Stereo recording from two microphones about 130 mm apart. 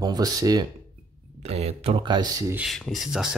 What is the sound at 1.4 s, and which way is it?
Speech, 55° right (ahead or behind).